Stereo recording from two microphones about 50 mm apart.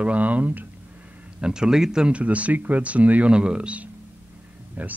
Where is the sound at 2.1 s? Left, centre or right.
Right.